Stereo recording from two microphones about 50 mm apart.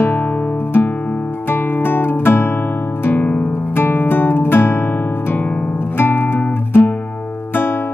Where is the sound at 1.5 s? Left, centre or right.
Left.